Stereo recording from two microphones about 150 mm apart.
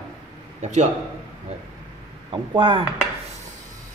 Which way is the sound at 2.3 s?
35° right (ahead or behind).